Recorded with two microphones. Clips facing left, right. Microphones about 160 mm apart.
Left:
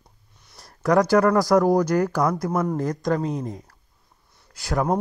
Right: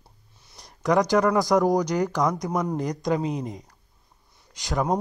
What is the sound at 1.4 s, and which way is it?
Speech, centre (ahead or behind).